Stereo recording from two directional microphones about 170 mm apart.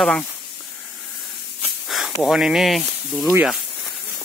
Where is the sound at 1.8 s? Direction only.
Centre (ahead or behind).